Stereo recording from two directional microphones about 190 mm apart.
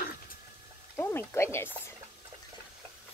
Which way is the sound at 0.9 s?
15° left (ahead or behind).